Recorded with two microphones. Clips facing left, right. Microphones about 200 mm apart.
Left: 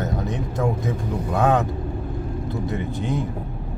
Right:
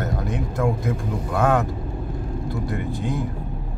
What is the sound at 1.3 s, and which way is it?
Speech, 20° left (ahead or behind).